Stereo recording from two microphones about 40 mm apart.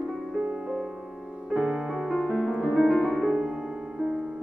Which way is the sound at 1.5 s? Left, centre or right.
Right.